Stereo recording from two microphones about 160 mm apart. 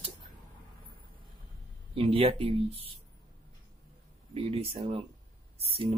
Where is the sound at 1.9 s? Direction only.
35° right (ahead or behind).